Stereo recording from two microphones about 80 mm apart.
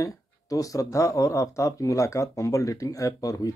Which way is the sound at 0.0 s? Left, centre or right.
Left.